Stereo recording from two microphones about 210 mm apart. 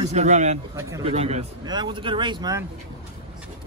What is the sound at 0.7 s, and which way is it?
Speech, 15° right (ahead or behind).